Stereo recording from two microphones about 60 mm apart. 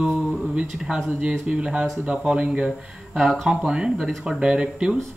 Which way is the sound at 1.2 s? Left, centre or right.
Centre.